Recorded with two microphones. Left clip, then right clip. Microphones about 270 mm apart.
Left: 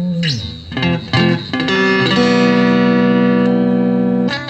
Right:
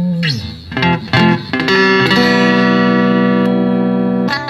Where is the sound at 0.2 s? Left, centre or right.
Right.